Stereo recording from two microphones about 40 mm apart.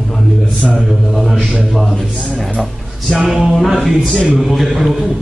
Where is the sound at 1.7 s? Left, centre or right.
Centre.